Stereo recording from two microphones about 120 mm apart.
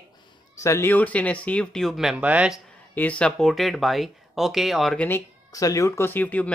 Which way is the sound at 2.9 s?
10° left (ahead or behind).